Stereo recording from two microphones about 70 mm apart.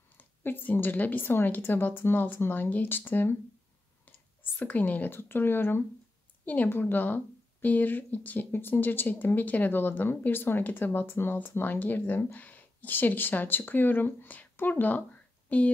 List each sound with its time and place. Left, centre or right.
0.2 s speech: left